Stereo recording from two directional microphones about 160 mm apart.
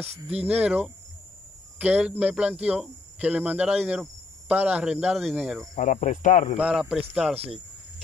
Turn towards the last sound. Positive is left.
turn(degrees=0)  # may be behind; listen again after turning